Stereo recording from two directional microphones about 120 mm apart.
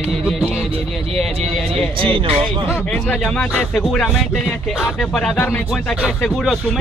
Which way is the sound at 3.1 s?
10° left (ahead or behind).